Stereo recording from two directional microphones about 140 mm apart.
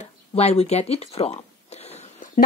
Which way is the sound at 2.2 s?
70° left (ahead or behind).